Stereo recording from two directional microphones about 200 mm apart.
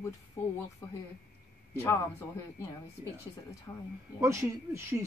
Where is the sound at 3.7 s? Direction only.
15° left (ahead or behind).